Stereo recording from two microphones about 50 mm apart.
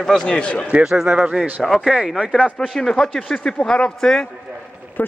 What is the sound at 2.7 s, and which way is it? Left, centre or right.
Speech, centre.